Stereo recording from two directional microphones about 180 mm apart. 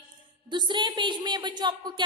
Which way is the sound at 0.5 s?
25° right (ahead or behind).